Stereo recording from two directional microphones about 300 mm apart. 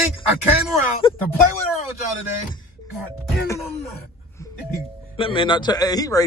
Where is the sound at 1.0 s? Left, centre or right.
Centre.